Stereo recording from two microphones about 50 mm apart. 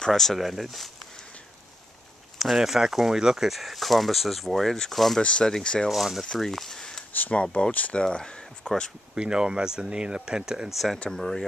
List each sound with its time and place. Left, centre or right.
0.0 s speech: centre
2.3 s speech: centre
5.2 s speech: centre
5.9 s speech: centre
6.2 s speech: centre
7.2 s speech: left
8.0 s speech: centre
9.1 s speech: centre
11.1 s speech: centre